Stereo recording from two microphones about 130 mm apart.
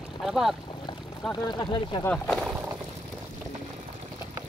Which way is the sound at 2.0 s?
5° left (ahead or behind).